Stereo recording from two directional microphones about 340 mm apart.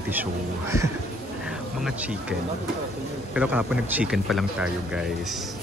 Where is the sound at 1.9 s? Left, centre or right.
Centre.